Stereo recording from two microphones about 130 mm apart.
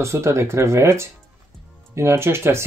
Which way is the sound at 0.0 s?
20° right (ahead or behind).